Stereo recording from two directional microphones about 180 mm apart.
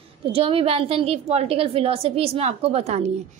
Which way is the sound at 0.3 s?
30° right (ahead or behind).